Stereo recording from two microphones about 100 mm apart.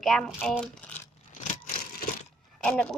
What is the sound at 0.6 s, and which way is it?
Coin, 15° left (ahead or behind).